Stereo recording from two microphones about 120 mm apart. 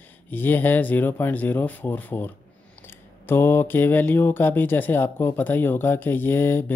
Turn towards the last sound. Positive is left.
turn(degrees=20)  # may be behind; listen again after turning